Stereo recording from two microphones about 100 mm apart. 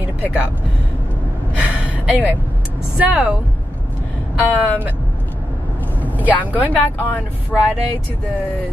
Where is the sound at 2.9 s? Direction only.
10° right (ahead or behind).